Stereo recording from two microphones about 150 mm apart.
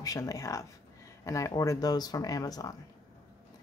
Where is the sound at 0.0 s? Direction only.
25° left (ahead or behind).